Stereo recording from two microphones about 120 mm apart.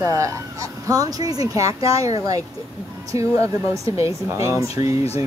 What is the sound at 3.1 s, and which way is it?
Speech, 25° right (ahead or behind).